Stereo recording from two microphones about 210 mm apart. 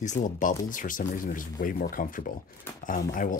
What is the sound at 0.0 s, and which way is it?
Speech, 35° left (ahead or behind).